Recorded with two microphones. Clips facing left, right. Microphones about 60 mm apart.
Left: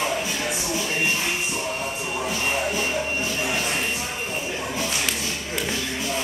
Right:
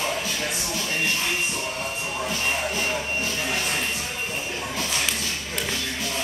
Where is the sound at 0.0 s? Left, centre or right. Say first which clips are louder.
Left 2 dB; centre.